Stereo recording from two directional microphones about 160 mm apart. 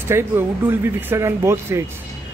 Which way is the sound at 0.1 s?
15° right (ahead or behind).